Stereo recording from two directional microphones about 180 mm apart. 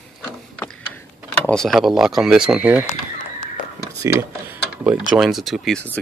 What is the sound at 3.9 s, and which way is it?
Speech, 15° right (ahead or behind).